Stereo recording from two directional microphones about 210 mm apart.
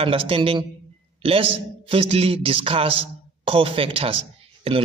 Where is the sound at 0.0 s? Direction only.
25° right (ahead or behind).